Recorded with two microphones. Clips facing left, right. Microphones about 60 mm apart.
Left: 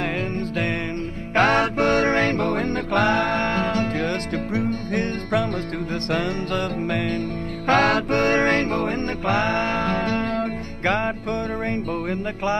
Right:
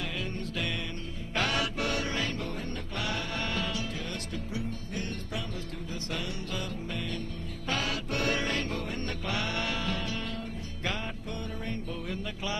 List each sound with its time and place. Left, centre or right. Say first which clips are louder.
1.3 s music: left 12 dB; left
11.7 s music: left 11 dB; left